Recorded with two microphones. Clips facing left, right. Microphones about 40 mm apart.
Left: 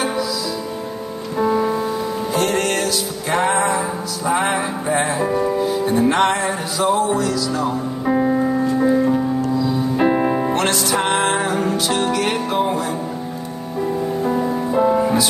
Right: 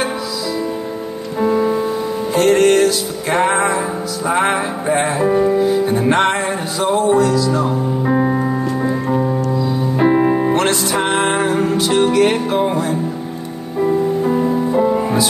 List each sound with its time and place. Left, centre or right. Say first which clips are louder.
1.4 s music: right 3 dB; centre
8.0 s music: left 1 dB; centre
9.0 s music: even; centre
14.2 s music: right 4 dB; centre